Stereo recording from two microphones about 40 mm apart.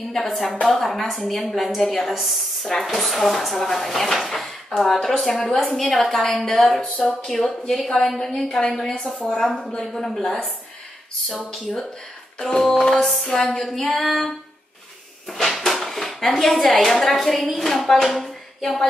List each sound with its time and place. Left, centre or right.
0.1 s a woman's voice: centre
6.8 s speech: centre
7.3 s a woman's voice: centre
12.4 s a woman's voice: centre
12.9 s a woman's voice: centre
15.2 s a sound: centre
16.3 s a woman's voice: centre